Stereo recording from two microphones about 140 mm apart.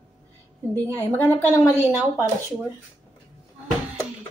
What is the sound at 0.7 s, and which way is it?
A woman's voice, 15° left (ahead or behind).